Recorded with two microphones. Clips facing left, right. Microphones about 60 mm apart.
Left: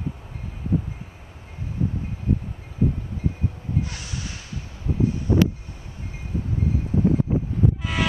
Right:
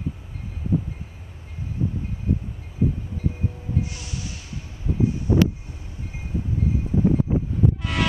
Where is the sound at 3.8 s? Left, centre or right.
Left.